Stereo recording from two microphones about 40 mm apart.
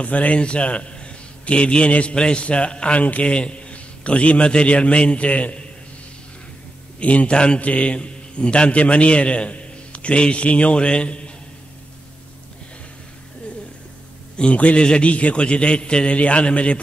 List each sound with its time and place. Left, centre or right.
0.0 s a man's voice: left
7.0 s a man's voice: left
14.3 s a man's voice: left